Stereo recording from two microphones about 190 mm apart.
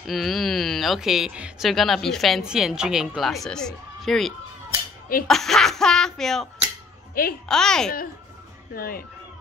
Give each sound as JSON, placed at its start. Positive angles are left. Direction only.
{"t": 0.0, "sound": "speech", "side_deg": 0}
{"t": 8.7, "sound": "speech", "side_deg": 50}